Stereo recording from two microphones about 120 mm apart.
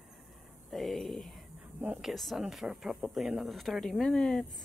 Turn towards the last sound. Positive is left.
turn(degrees=5)  # may be behind; listen again after turning